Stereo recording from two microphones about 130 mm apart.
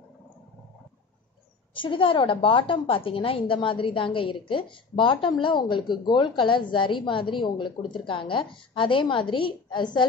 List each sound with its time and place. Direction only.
1.7 s a woman's voice: 40° left (ahead or behind)